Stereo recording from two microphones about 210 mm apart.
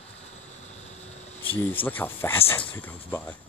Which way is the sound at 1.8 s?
10° left (ahead or behind).